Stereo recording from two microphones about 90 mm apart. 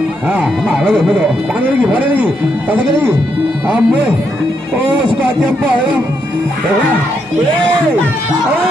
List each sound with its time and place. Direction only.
0.3 s speech: 20° right (ahead or behind)
0.7 s speech: 5° left (ahead or behind)
1.0 s speech: 15° right (ahead or behind)
3.6 s speech: 15° right (ahead or behind)